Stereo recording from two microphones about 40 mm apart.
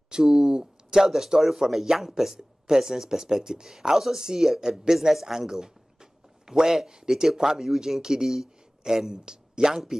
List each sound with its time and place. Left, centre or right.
0.1 s speech: centre
9.1 s speech: centre